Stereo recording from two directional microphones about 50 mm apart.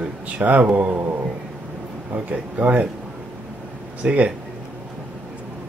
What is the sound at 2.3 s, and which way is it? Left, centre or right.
Speech, right.